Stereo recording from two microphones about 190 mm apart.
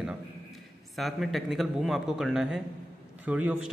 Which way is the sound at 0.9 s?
Centre (ahead or behind).